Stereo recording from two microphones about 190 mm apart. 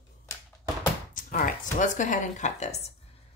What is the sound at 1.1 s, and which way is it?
Speech, 45° left (ahead or behind).